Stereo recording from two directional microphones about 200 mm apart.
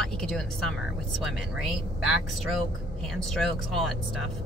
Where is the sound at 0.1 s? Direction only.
5° left (ahead or behind).